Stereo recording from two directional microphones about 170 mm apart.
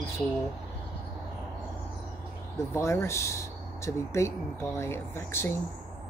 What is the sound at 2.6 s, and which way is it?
Speech, 15° left (ahead or behind).